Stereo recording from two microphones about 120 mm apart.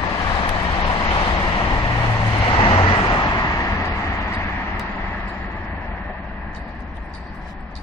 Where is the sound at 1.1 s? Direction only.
40° left (ahead or behind); by 4.5 s 25° left (ahead or behind).